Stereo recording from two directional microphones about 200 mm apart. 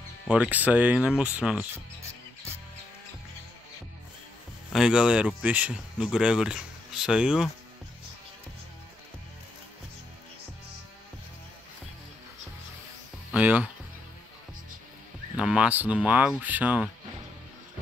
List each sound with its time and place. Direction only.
0.3 s speech: 5° right (ahead or behind)
4.7 s speech: 5° right (ahead or behind)
13.3 s speech: 5° right (ahead or behind)
15.3 s speech: 5° right (ahead or behind)